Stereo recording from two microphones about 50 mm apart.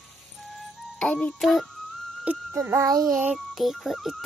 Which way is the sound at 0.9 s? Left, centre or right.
Left.